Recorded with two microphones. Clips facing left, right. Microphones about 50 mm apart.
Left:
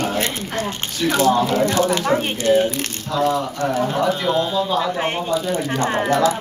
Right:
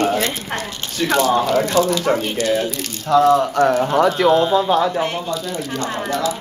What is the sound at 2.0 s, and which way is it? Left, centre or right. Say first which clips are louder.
Speech: right 1 dB; left.